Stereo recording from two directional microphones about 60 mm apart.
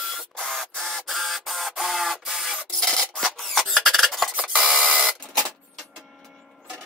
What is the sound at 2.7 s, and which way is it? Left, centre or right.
Rub, centre.